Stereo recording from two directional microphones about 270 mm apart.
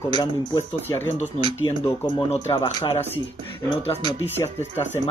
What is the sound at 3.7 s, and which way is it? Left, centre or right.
Speech, left.